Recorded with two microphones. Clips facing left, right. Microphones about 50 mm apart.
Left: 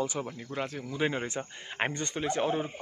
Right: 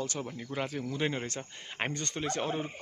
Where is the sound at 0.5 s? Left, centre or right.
Centre.